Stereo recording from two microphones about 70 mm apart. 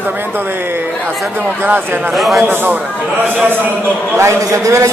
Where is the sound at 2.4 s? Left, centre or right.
Right.